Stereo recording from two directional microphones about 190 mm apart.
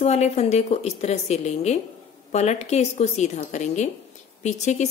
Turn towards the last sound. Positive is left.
turn(degrees=35)  # may be behind; listen again after turning